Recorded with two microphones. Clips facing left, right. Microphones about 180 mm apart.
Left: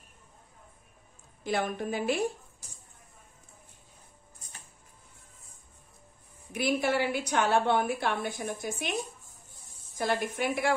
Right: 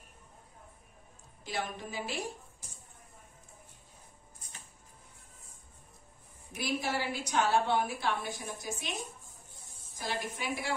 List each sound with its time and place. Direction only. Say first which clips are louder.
1.4 s a woman's voice: left 7 dB; 55° left (ahead or behind)
6.5 s a woman's voice: left 6 dB; 60° left (ahead or behind)
9.9 s a woman's voice: left 7 dB; 60° left (ahead or behind)